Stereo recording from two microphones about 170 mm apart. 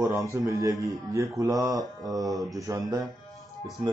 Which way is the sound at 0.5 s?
20° right (ahead or behind).